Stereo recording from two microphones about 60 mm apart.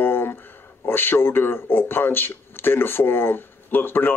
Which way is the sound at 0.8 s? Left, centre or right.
Left.